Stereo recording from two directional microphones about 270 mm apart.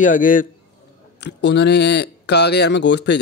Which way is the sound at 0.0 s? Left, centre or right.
Left.